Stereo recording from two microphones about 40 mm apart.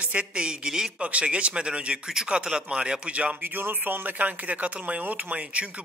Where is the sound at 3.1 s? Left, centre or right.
Right.